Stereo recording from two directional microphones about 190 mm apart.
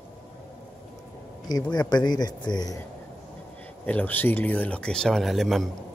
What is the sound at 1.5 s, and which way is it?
Speech, 20° left (ahead or behind).